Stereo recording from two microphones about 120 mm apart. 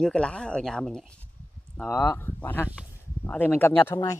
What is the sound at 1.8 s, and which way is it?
Speech, 20° left (ahead or behind).